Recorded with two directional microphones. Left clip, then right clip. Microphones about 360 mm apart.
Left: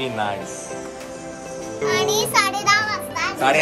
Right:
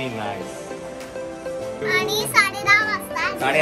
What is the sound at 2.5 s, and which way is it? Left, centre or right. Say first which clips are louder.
Children playing: right 1 dB; centre.